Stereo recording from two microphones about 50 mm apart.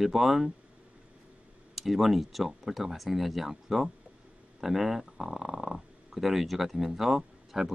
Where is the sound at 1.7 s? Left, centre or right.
Centre.